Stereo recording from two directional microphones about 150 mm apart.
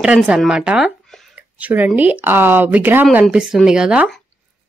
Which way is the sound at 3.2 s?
5° right (ahead or behind).